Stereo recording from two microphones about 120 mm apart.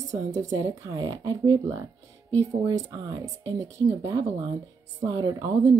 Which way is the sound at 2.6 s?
30° right (ahead or behind).